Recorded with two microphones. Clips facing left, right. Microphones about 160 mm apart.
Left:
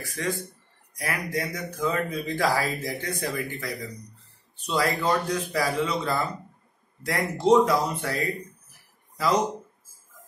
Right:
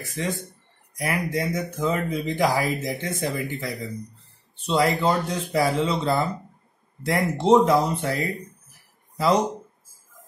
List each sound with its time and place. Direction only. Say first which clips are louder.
0.0 s speech: right 1 dB; 20° right (ahead or behind)
9.1 s speech: right 3 dB; 25° right (ahead or behind)